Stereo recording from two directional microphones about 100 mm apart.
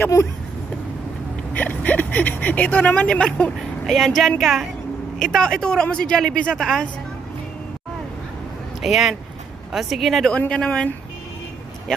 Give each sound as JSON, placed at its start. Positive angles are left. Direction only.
{"t": 0.0, "sound": "speech", "side_deg": 30}
{"t": 1.5, "sound": "speech", "side_deg": 15}
{"t": 3.8, "sound": "speech", "side_deg": 0}
{"t": 8.8, "sound": "speech", "side_deg": 0}
{"t": 10.3, "sound": "speech", "side_deg": 10}